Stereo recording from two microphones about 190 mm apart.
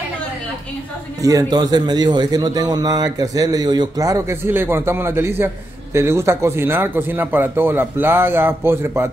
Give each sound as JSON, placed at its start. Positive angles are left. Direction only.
{"t": 1.2, "sound": "a man's voice", "side_deg": -20}